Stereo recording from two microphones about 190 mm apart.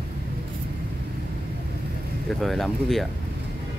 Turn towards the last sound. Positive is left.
turn(degrees=0)  # may be behind; listen again after turning